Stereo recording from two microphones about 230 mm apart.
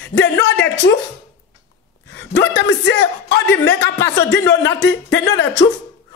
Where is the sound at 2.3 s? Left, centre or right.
Left.